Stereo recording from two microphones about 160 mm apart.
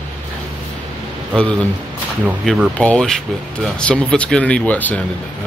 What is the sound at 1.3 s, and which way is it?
Speech, 5° left (ahead or behind).